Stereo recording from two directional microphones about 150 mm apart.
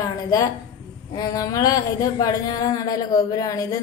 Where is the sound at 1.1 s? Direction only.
25° left (ahead or behind).